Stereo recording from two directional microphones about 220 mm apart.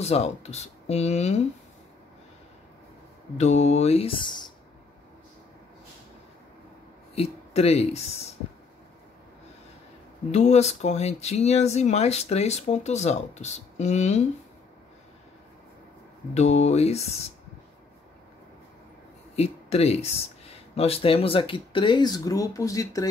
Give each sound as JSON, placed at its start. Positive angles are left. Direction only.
{"t": 0.0, "sound": "speech", "side_deg": 30}
{"t": 3.3, "sound": "speech", "side_deg": 30}
{"t": 7.2, "sound": "speech", "side_deg": 30}
{"t": 10.3, "sound": "speech", "side_deg": 30}
{"t": 16.3, "sound": "speech", "side_deg": 30}
{"t": 19.3, "sound": "speech", "side_deg": 30}